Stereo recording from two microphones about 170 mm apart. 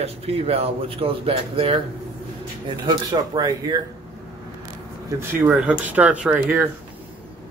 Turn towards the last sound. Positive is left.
turn(degrees=-10)  # may be behind; listen again after turning